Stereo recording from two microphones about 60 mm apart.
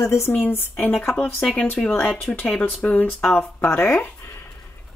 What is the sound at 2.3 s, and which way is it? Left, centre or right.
Speech, left.